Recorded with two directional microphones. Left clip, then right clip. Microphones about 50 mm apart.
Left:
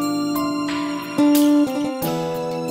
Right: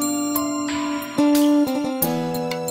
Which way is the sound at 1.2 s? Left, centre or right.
Centre.